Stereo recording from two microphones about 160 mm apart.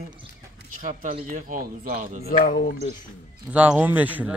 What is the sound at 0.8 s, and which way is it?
Speech, 55° right (ahead or behind).